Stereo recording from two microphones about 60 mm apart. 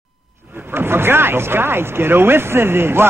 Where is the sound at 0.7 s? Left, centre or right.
Right.